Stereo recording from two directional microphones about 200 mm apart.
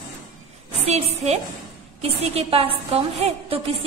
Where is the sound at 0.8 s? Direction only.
30° right (ahead or behind).